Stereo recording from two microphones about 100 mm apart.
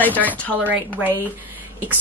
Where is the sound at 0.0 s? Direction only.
15° left (ahead or behind).